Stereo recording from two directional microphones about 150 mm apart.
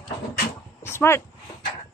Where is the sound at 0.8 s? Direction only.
15° left (ahead or behind).